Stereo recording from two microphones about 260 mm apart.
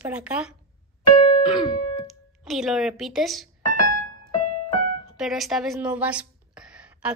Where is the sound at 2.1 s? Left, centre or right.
Centre.